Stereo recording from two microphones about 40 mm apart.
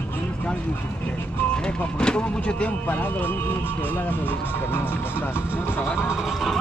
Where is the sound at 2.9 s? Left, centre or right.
Left.